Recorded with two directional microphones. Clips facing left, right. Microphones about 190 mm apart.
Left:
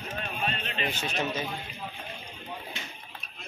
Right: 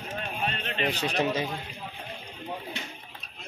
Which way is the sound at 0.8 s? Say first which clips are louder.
Right 5 dB; 35° right (ahead or behind).